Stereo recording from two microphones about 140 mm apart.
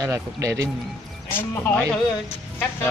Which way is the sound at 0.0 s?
20° right (ahead or behind).